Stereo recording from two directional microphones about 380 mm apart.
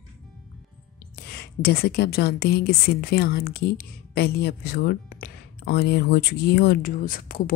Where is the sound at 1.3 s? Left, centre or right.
Left.